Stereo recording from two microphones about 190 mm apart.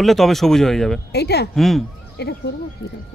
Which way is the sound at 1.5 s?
Centre (ahead or behind).